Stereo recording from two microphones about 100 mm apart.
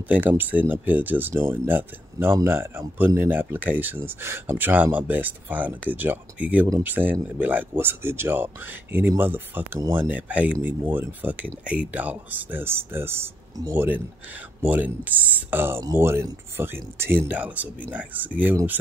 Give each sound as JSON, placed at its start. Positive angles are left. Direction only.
{"t": 0.1, "sound": "speech", "side_deg": -20}